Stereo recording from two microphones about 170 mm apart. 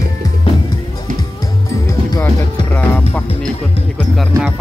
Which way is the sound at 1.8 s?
15° left (ahead or behind).